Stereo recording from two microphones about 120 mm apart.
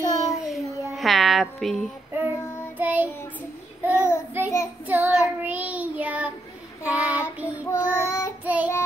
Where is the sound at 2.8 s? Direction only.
15° right (ahead or behind).